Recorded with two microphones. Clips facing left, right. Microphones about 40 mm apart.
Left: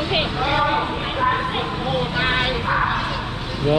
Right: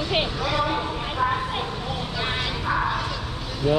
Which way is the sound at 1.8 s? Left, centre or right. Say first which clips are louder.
Left 7 dB; left.